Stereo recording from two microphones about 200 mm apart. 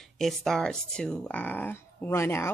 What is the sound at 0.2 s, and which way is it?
Speech, centre (ahead or behind).